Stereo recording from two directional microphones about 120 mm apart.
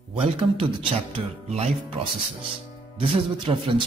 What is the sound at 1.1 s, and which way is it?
Music, 55° right (ahead or behind).